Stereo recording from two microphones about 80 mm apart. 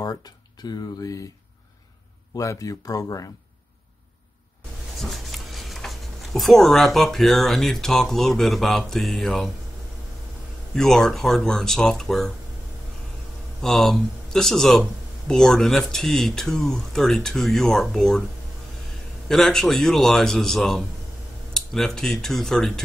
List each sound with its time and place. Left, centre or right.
0.0 s speech: left
2.3 s speech: left
5.0 s speech: centre
10.7 s speech: centre
13.6 s speech: centre
19.2 s speech: centre